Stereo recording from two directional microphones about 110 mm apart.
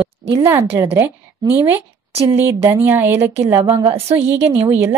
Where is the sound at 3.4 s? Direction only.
55° right (ahead or behind).